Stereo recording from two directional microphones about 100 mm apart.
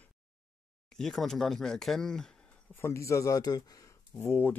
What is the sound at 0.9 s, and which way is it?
Speech, 5° left (ahead or behind).